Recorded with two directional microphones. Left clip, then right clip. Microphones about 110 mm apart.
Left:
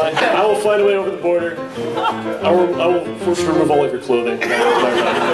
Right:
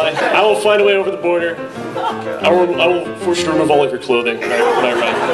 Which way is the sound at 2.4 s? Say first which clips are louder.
Right 2 dB; 20° right (ahead or behind).